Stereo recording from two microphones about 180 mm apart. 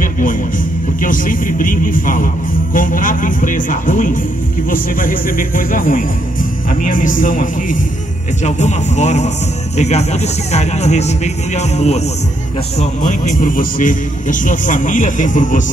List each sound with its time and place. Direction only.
0.0 s music: 50° left (ahead or behind)
1.0 s speech: 50° left (ahead or behind)
8.5 s speech: 40° left (ahead or behind)